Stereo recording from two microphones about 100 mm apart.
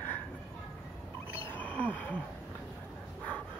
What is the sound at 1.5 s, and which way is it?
Wild animals, 15° left (ahead or behind).